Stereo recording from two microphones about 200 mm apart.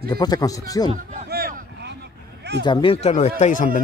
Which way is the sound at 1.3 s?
50° right (ahead or behind).